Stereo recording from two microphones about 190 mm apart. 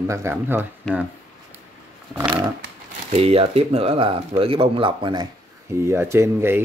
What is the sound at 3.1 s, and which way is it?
Speech, 30° right (ahead or behind).